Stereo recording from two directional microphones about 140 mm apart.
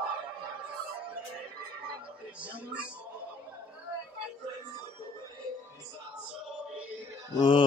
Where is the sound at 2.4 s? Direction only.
10° right (ahead or behind).